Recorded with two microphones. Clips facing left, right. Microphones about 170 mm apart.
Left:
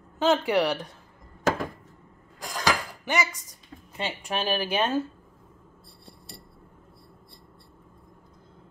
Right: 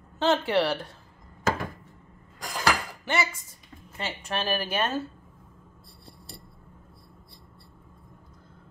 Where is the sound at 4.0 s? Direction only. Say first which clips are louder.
Left 2 dB; 15° left (ahead or behind).